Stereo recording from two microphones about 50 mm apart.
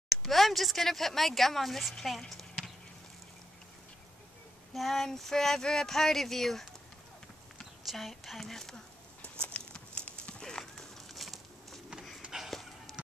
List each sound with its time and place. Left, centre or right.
0.1 s speech: centre
4.7 s speech: centre
7.8 s speech: centre
9.2 s clip-clop: left
10.6 s a sound: centre